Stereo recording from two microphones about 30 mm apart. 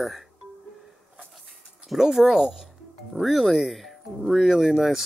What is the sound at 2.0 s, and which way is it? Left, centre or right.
Speech, centre.